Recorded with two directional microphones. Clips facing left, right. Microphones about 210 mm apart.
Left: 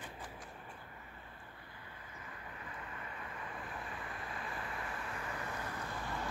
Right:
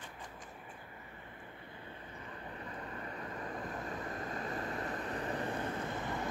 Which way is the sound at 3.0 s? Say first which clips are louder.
Right 5 dB; 40° right (ahead or behind).